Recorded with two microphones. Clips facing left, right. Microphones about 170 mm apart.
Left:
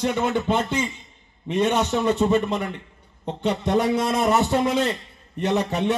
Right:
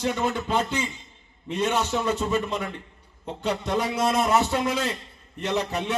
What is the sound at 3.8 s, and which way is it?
A man's voice, centre (ahead or behind).